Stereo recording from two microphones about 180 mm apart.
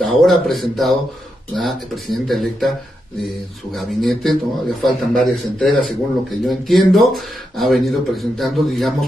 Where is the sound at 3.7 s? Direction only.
Centre (ahead or behind).